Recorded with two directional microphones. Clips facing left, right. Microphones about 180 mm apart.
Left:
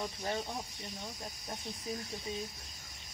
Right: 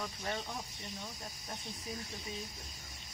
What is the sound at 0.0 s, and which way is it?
Speech, 25° left (ahead or behind).